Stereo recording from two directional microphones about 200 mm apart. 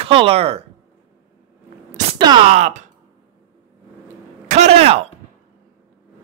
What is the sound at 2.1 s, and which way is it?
Speech, 25° right (ahead or behind).